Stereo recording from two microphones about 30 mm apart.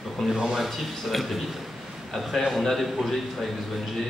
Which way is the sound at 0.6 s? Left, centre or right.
Centre.